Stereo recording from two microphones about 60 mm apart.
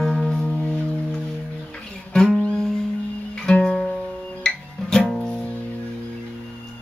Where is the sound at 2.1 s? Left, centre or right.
Centre.